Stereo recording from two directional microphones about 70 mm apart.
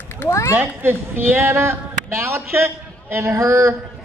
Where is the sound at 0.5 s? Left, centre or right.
Right.